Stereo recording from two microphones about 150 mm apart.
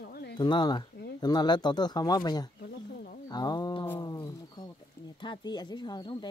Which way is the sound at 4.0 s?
25° left (ahead or behind).